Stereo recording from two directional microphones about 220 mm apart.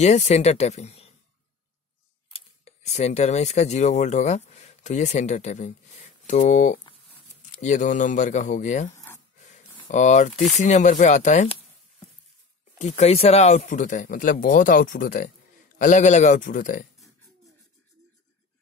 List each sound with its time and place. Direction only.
0.0 s speech: 30° left (ahead or behind)
2.2 s speech: 25° left (ahead or behind)
8.9 s wood: 10° left (ahead or behind)
9.6 s speech: 30° left (ahead or behind)
12.7 s speech: 30° left (ahead or behind)